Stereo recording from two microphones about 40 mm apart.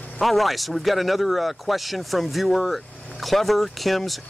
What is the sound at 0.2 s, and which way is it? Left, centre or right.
Speech, centre.